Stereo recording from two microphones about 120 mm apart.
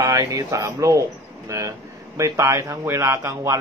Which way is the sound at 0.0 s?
30° right (ahead or behind).